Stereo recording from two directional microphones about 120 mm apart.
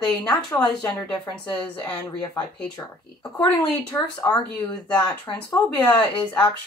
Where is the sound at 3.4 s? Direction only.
30° left (ahead or behind).